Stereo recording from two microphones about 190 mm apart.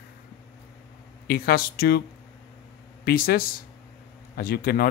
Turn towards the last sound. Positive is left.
turn(degrees=50)  # may be behind; listen again after turning